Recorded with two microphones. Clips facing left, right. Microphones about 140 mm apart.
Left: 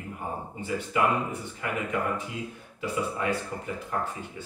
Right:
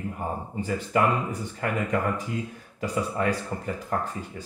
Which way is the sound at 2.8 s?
40° right (ahead or behind).